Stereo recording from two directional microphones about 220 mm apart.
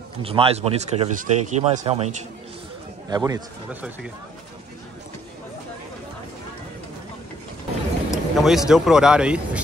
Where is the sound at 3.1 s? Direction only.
15° right (ahead or behind).